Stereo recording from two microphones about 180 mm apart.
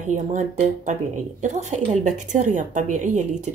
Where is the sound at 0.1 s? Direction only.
45° right (ahead or behind).